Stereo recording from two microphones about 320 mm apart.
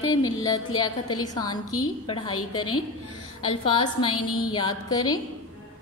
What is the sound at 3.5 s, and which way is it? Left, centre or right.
Speech, centre.